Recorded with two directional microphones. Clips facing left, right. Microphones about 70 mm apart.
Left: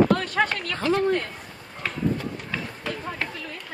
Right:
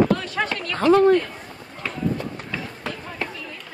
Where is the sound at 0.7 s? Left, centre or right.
Right.